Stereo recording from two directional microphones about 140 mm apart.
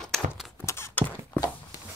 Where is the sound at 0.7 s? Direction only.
20° left (ahead or behind).